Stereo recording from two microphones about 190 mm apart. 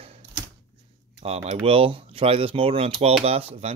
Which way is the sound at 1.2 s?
35° right (ahead or behind).